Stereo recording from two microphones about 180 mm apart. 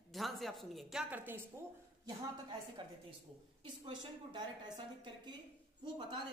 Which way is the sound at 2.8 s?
25° right (ahead or behind).